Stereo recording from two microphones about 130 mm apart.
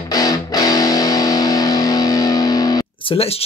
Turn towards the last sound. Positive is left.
turn(degrees=50)  # may be behind; listen again after turning